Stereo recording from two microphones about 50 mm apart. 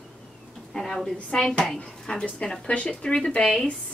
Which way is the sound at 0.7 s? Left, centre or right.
Centre.